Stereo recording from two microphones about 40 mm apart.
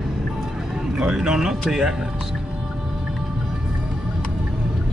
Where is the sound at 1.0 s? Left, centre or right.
Centre.